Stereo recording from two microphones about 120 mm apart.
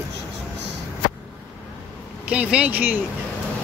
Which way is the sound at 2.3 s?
10° right (ahead or behind).